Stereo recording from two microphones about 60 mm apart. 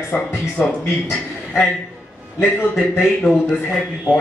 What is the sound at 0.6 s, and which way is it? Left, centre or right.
Speech, left.